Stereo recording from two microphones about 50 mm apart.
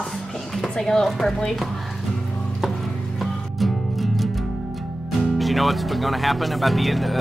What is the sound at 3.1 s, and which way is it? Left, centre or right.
Music, centre.